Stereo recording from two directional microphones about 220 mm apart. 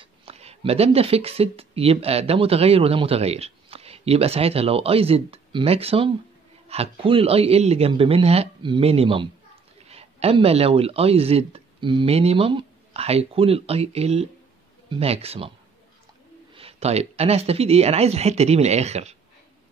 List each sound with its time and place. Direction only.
0.0 s speech: 25° right (ahead or behind)
16.5 s speech: 25° right (ahead or behind)